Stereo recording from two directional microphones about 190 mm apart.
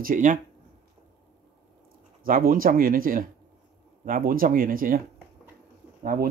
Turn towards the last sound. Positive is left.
turn(degrees=-50)  # may be behind; listen again after turning